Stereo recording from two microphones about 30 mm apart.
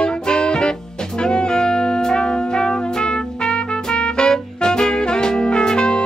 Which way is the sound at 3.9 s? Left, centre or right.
Left.